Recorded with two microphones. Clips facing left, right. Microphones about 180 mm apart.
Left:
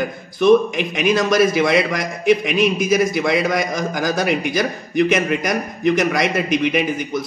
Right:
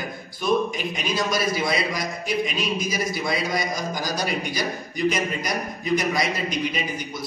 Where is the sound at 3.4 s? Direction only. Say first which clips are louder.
Left 6 dB; 50° left (ahead or behind).